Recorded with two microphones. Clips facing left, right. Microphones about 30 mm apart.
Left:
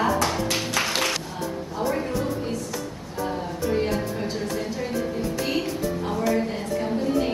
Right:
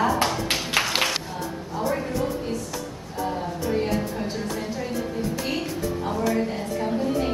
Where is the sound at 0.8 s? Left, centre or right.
Centre.